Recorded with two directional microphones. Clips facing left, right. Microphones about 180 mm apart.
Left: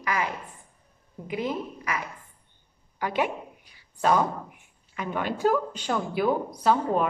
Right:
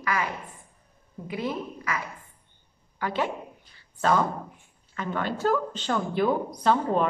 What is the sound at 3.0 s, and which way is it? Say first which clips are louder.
Speech: left 1 dB; 15° left (ahead or behind).